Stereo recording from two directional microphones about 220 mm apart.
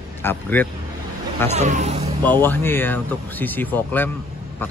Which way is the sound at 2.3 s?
10° left (ahead or behind).